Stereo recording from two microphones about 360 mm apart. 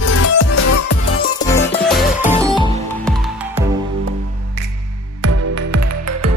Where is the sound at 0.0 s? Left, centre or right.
Left.